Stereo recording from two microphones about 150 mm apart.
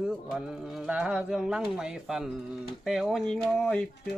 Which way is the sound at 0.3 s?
5° right (ahead or behind).